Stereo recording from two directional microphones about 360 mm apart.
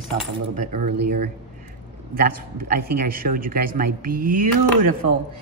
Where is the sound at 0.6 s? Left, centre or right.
Right.